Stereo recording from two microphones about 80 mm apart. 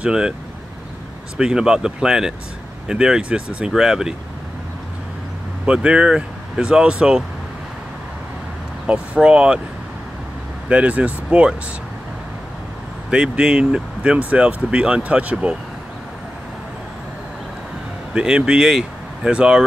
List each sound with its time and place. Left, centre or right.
0.0 s speech: centre
1.4 s speech: centre
5.7 s speech: centre
8.8 s speech: centre
10.7 s speech: centre
13.1 s speech: centre
18.1 s speech: centre